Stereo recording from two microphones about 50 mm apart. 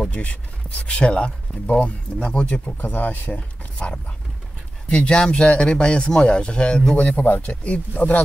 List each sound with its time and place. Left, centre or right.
0.1 s speech: left
2.8 s speech: left; by 7.0 s centre
7.0 s speech: left